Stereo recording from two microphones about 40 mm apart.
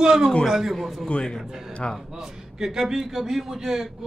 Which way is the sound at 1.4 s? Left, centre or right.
Centre.